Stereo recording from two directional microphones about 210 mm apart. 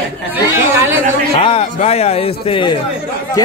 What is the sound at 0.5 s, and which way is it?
Speech, 10° right (ahead or behind).